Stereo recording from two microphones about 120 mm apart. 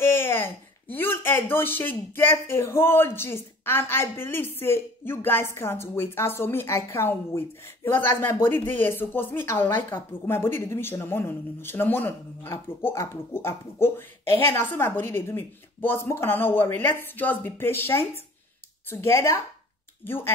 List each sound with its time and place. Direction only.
0.0 s speech: 20° left (ahead or behind)